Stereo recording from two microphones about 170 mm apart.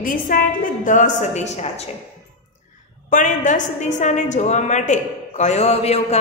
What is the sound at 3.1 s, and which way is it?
A woman's voice, 45° left (ahead or behind).